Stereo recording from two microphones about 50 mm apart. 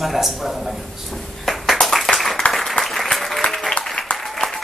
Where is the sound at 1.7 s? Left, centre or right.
Centre.